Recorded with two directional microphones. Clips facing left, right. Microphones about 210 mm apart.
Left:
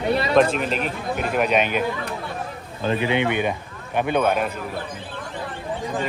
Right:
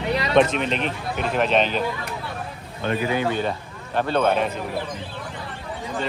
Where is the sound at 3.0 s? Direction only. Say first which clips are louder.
Left 1 dB; 20° left (ahead or behind).